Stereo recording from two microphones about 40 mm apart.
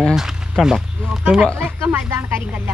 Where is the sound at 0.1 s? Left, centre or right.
Centre.